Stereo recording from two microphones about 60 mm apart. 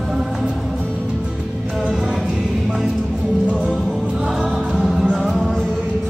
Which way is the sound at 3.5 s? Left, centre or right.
Centre.